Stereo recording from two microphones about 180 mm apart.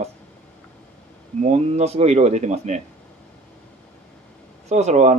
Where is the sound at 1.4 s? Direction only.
35° right (ahead or behind).